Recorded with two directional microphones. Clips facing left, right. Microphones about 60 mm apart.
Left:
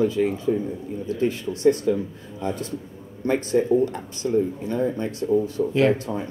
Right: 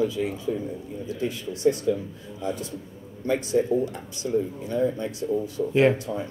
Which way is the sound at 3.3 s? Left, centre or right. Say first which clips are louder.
Left 3 dB; left.